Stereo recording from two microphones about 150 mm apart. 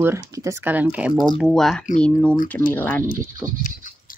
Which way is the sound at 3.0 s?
65° left (ahead or behind).